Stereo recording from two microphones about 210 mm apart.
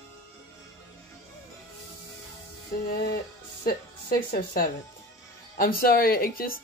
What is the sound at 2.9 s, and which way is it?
Music, 50° left (ahead or behind).